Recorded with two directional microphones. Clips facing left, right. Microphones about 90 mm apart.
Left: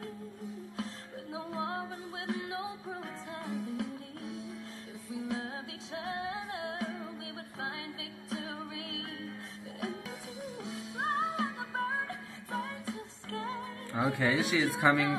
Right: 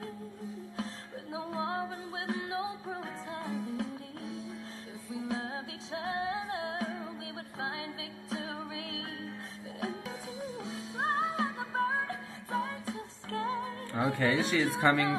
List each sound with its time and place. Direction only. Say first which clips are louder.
1.3 s music: right 2 dB; 25° right (ahead or behind)
5.3 s music: right 1 dB; 30° right (ahead or behind)
13.9 s speech: right 1 dB; 5° left (ahead or behind)